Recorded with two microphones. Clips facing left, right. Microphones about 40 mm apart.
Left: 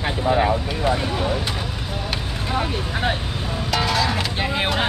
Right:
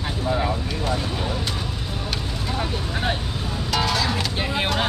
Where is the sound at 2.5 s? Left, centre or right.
Left.